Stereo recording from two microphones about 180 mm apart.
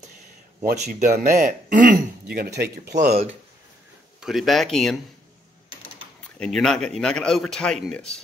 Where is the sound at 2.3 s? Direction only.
65° right (ahead or behind).